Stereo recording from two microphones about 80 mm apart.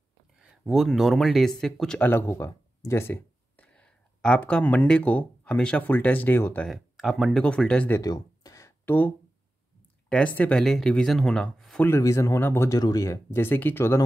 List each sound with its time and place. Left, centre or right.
0.4 s speech: centre
2.0 s speech: left
3.5 s speech: centre
6.7 s speech: centre
7.4 s speech: centre
8.0 s a sound: left
8.8 s speech: left
10.6 s speech: centre
12.0 s speech: left
12.6 s speech: left
13.0 s speech: left